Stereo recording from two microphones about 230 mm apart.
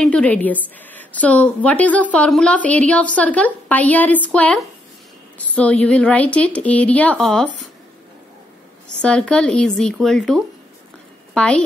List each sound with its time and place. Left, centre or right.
0.0 s a woman's voice: centre
9.0 s a woman's voice: centre